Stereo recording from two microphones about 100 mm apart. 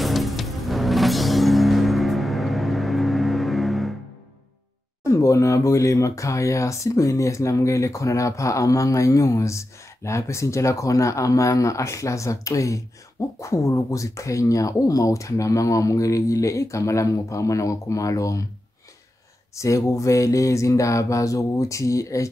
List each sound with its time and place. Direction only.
0.0 s music: centre (ahead or behind)
5.0 s speech: 30° left (ahead or behind)
19.5 s speech: 30° left (ahead or behind)